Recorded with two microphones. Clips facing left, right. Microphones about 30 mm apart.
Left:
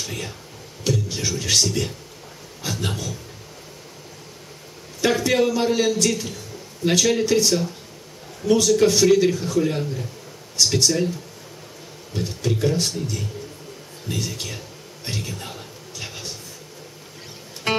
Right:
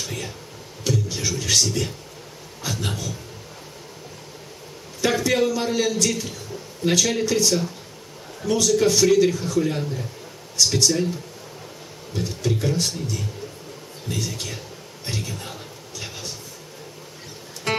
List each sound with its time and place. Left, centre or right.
0.0 s a sound: centre
2.6 s speech: centre
5.0 s a man's voice: centre
12.1 s speech: centre
15.0 s a sound: centre
17.7 s music: centre